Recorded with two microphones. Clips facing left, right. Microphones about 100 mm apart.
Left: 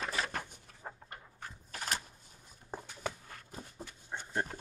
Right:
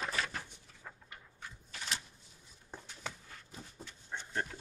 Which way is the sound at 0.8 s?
45° left (ahead or behind).